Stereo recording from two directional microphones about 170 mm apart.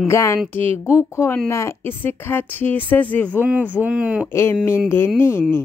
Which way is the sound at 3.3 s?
10° right (ahead or behind).